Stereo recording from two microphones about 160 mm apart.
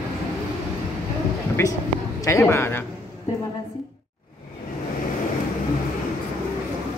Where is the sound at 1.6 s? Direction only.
15° left (ahead or behind).